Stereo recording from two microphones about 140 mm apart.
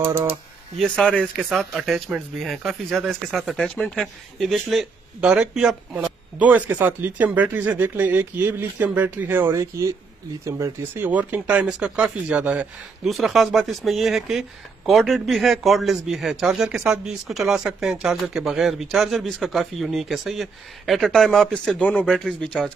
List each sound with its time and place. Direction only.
0.0 s speech: 15° right (ahead or behind)
0.7 s speech: 5° left (ahead or behind)